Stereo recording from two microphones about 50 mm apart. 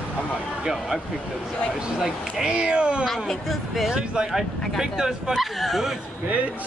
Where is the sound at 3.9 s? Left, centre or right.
Centre.